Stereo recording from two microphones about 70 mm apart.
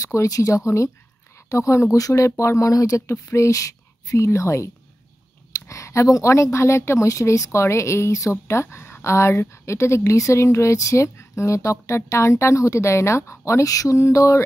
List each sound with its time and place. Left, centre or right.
0.0 s a woman's voice: left
5.7 s a woman's voice: left